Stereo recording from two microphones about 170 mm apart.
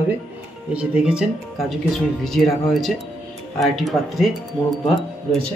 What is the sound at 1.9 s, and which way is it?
Speech, centre (ahead or behind).